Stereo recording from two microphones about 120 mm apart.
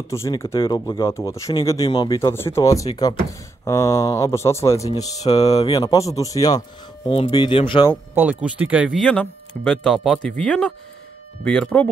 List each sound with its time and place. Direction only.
0.6 s speech: 35° left (ahead or behind)
1.1 s speech: 25° left (ahead or behind)
1.9 s speech: 45° left (ahead or behind)
2.1 s speech: 20° left (ahead or behind)
7.1 s speech: 45° left (ahead or behind)
8.1 s speech: 15° right (ahead or behind)
8.9 s speech: 10° left (ahead or behind)